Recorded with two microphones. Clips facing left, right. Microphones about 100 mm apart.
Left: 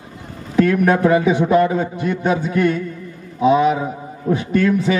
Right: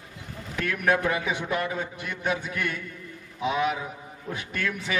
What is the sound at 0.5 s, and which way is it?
A man's voice, 30° left (ahead or behind).